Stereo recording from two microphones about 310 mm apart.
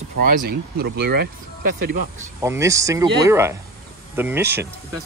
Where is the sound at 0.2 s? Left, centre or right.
Right.